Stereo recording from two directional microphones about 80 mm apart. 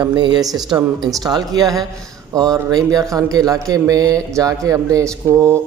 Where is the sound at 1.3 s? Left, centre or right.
Right.